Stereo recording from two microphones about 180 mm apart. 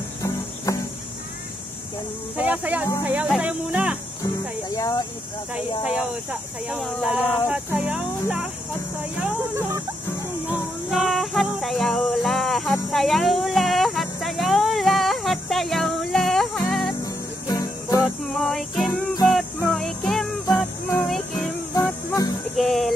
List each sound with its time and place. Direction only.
0.7 s cricket: 15° left (ahead or behind)
2.3 s speech: 10° right (ahead or behind)
4.7 s speech: 20° left (ahead or behind)
6.7 s speech: centre (ahead or behind)
10.9 s music: centre (ahead or behind)
17.5 s music: 20° left (ahead or behind)
18.2 s female singing: centre (ahead or behind)
19.3 s music: centre (ahead or behind)
20.4 s music: 20° left (ahead or behind)
22.6 s speech: centre (ahead or behind)